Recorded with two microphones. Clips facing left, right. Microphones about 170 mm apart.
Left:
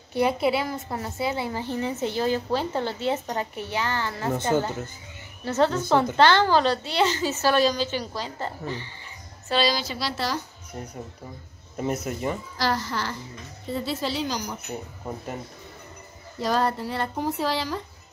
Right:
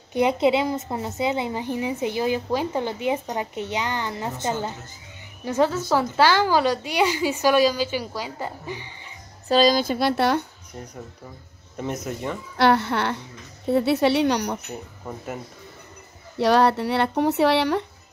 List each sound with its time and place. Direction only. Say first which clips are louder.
0.1 s a woman's voice: right 3 dB; 20° right (ahead or behind)
5.4 s a woman's voice: right 1 dB; 10° right (ahead or behind)
9.5 s speech: right 6 dB; 45° right (ahead or behind); by 10.4 s 60° right (ahead or behind)
11.7 s speech: left 1 dB; 5° left (ahead or behind)
12.5 s speech: right 11 dB; 65° right (ahead or behind)
16.3 s speech: right 6 dB; 70° right (ahead or behind)